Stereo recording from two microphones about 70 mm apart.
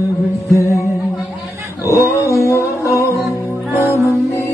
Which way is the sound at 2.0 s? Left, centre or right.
Left.